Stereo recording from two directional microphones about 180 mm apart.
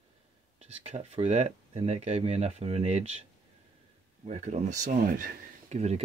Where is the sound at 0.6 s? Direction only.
35° right (ahead or behind).